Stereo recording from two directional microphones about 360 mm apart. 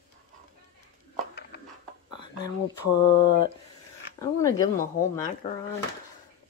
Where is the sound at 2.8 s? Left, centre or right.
Left.